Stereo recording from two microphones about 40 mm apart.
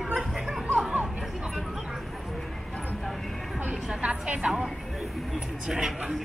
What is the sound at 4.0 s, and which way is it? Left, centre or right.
Speech, right.